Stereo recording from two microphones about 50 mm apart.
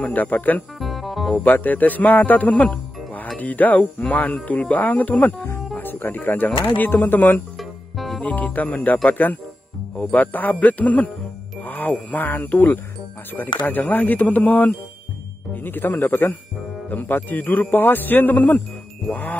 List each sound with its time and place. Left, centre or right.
0.0 s speech: left
0.7 s music: centre
1.3 s speech: left
7.5 s music: centre
8.2 s speech: left
10.1 s speech: left